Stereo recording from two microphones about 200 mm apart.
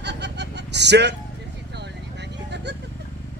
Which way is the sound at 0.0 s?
60° right (ahead or behind).